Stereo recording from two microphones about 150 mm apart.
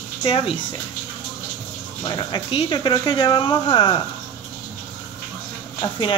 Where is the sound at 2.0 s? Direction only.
30° left (ahead or behind).